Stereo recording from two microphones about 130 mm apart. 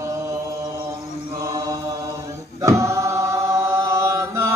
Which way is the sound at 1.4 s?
30° right (ahead or behind).